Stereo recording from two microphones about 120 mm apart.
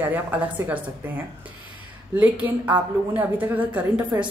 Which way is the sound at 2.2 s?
15° right (ahead or behind).